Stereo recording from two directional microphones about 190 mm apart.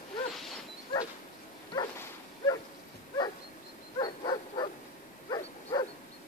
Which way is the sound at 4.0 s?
25° left (ahead or behind).